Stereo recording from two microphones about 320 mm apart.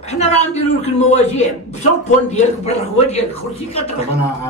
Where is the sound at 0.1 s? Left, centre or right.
Left.